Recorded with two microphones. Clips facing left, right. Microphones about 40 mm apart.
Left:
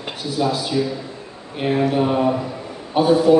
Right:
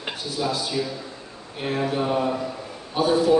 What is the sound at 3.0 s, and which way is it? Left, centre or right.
Speech, left.